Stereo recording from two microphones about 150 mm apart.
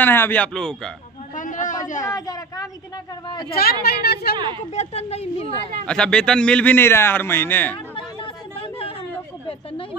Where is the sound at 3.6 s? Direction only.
90° left.